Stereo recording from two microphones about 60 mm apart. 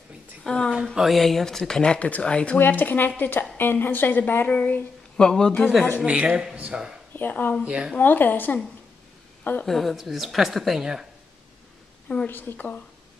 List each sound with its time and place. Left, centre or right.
0.4 s a man's voice: centre
1.6 s speech: centre
2.6 s a woman's voice: left
5.1 s a man's voice: centre
5.9 s speech: centre
7.2 s a woman's voice: left
7.6 s speech: centre
8.0 s a woman's voice: left
9.7 s a woman's voice: centre
12.3 s a woman's voice: left